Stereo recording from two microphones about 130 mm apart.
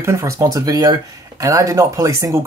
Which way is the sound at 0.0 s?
20° right (ahead or behind).